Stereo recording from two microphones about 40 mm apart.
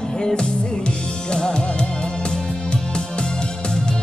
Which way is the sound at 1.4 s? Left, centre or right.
Centre.